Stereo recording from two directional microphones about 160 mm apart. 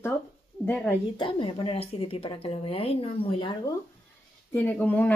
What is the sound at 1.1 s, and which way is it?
A woman's voice, 35° left (ahead or behind).